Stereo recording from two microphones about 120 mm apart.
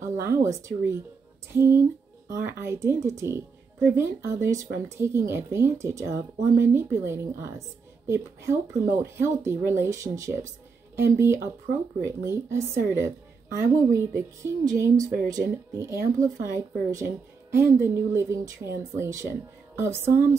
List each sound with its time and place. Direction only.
0.2 s speech: 20° right (ahead or behind)